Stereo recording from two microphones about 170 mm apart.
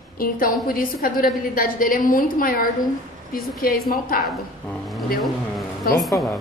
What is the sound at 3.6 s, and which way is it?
Speech, 60° left (ahead or behind).